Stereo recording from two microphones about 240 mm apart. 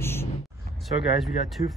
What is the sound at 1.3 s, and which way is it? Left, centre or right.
Speech, left.